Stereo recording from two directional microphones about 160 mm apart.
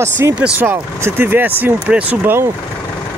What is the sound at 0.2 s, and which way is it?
Speech, 15° right (ahead or behind).